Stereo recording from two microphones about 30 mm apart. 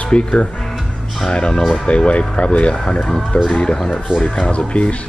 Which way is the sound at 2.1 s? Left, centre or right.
Left.